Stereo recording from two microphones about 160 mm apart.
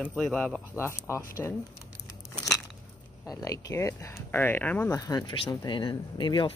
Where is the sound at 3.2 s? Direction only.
20° left (ahead or behind).